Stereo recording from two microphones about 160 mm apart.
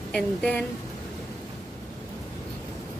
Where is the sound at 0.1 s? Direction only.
5° left (ahead or behind).